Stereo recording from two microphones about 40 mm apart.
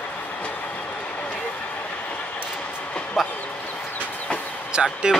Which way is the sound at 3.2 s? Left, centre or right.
Centre.